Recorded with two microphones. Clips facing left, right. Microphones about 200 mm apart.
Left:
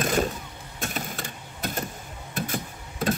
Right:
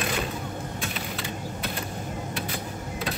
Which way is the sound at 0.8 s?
45° left (ahead or behind).